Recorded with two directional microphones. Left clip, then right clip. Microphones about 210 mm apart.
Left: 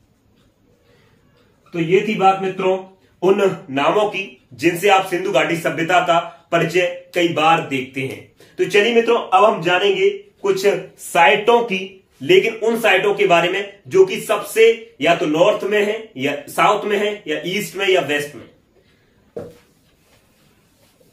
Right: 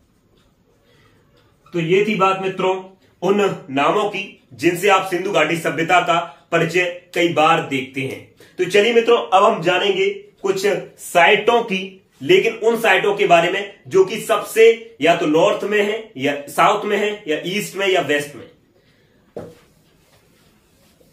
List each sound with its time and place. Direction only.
1.7 s a man's voice: 5° right (ahead or behind)
3.2 s a man's voice: 10° left (ahead or behind)
11.4 s a man's voice: 10° left (ahead or behind)